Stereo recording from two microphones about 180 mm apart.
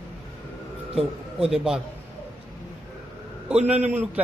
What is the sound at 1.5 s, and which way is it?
Speech, 5° right (ahead or behind).